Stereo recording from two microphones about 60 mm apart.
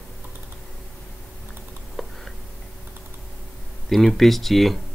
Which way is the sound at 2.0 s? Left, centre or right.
Centre.